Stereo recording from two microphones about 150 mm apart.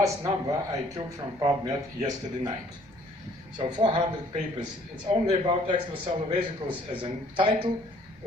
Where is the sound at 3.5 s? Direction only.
30° right (ahead or behind).